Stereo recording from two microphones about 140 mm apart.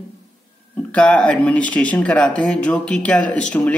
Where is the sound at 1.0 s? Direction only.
10° left (ahead or behind).